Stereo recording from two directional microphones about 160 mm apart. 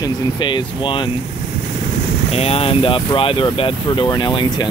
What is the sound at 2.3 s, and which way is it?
Speech, 40° left (ahead or behind).